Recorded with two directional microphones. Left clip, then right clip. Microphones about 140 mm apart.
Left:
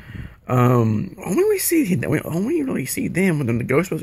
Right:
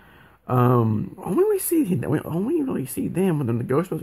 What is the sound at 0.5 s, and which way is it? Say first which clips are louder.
Speech: left 2 dB; 10° left (ahead or behind).